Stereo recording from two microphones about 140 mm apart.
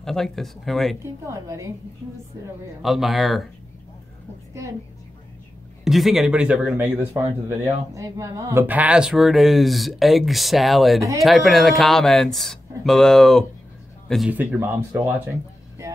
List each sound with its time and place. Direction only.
0.0 s speech: 5° left (ahead or behind)
1.2 s a woman's voice: 20° right (ahead or behind)
2.8 s speech: centre (ahead or behind)
5.9 s speech: centre (ahead or behind)
11.0 s a woman's voice: 20° right (ahead or behind)
11.2 s a man's voice: centre (ahead or behind)
14.3 s speech: 10° right (ahead or behind)